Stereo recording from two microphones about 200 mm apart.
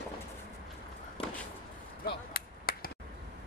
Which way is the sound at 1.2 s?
25° left (ahead or behind).